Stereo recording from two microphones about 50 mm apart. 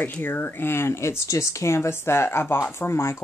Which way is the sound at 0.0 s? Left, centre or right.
Left.